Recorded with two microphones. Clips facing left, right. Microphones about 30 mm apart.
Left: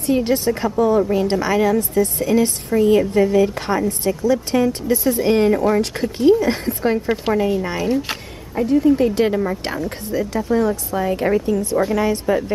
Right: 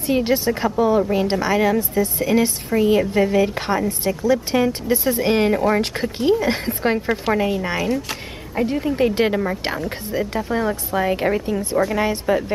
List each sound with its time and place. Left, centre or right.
0.1 s a woman's voice: centre
8.6 s a woman's voice: right; by 9.9 s centre
10.1 s a woman's voice: right; by 12.5 s centre